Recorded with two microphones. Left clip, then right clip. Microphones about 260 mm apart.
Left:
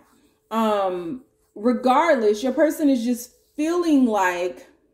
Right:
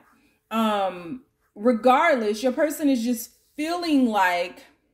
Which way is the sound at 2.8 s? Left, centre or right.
Right.